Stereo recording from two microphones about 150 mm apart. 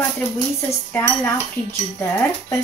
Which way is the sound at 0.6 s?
15° left (ahead or behind).